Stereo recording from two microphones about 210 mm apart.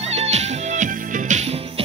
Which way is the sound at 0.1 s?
30° right (ahead or behind).